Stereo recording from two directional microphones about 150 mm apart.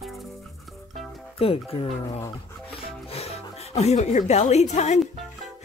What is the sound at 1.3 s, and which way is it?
Music, 40° left (ahead or behind).